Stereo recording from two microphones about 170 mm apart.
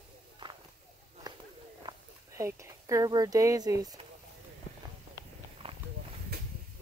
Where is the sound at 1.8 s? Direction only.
20° right (ahead or behind).